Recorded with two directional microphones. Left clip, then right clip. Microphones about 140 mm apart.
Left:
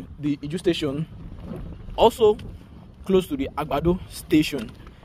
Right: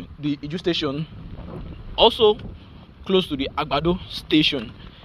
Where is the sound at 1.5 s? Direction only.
5° left (ahead or behind).